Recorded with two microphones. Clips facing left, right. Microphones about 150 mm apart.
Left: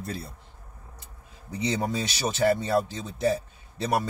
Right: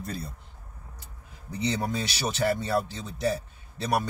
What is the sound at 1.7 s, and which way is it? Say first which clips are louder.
Speech: left 1 dB; 25° left (ahead or behind).